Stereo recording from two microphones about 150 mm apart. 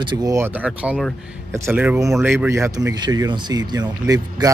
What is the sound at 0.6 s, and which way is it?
Speech, 10° right (ahead or behind).